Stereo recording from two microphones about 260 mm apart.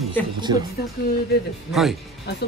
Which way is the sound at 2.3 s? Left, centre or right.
Left.